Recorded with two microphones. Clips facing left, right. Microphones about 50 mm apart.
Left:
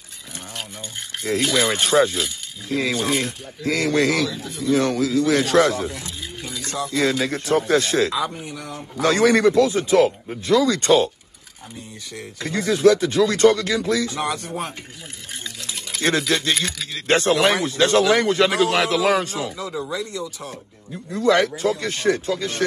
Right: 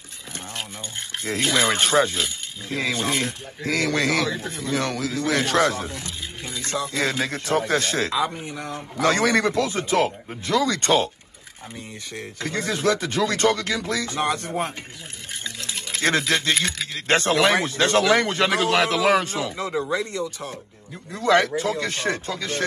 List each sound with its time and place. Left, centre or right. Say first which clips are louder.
1.2 s speech: left 2 dB; right
6.0 s a sound: left 1 dB; right
6.9 s speech: left 6 dB; right
8.1 s speech: right 1 dB; centre
8.5 s speech: right 1 dB; right
12.2 s speech: left 2 dB; right
15.4 s stir: right 2 dB; right
16.0 s speech: left 1 dB; right